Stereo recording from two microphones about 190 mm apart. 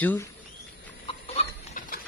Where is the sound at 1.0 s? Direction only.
35° left (ahead or behind).